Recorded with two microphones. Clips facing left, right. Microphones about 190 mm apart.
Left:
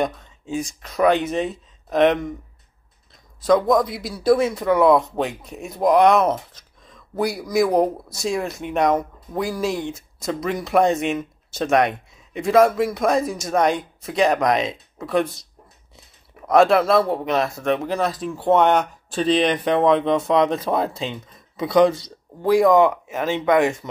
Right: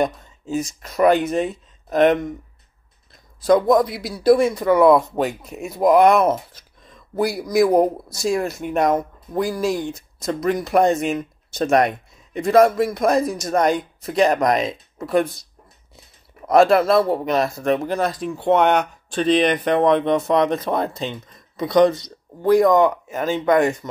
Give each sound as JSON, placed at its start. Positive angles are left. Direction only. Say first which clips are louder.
{"t": 0.0, "sound": "speech", "louder": "right 2 dB", "side_deg": 0}
{"t": 3.4, "sound": "speech", "louder": "right 2 dB", "side_deg": -5}
{"t": 16.4, "sound": "speech", "louder": "right 1 dB", "side_deg": 0}